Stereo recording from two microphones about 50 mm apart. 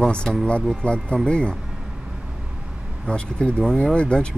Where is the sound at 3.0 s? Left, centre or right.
Left.